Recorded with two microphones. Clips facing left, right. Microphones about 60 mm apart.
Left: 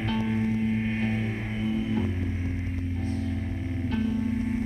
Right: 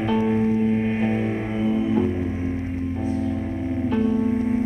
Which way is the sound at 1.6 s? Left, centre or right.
Centre.